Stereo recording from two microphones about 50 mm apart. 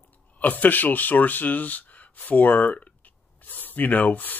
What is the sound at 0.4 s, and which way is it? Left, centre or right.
Speech, left.